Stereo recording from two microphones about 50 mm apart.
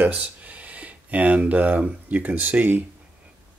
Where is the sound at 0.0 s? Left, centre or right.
Right.